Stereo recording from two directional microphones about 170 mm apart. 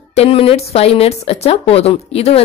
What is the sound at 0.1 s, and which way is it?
Speech, 35° left (ahead or behind).